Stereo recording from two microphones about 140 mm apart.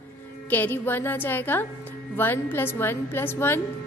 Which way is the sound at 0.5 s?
15° left (ahead or behind).